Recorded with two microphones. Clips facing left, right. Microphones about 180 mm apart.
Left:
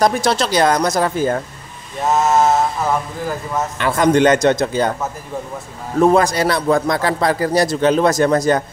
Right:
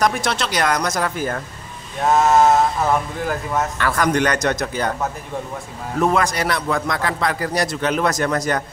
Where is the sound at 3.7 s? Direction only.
20° left (ahead or behind).